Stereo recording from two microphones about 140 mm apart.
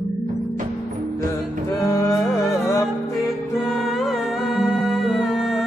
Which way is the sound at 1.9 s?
25° left (ahead or behind).